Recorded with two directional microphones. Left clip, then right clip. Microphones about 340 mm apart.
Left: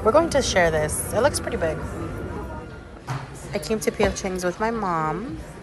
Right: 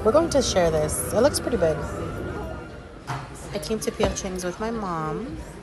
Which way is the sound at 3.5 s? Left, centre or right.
Centre.